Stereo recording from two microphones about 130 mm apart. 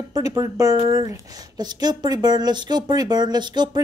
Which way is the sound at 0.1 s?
30° right (ahead or behind).